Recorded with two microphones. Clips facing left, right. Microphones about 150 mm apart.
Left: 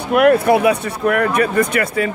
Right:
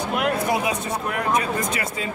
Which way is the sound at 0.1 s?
60° left (ahead or behind).